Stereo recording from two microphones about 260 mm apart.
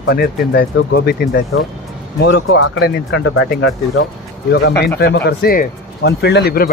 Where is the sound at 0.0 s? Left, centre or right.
Left.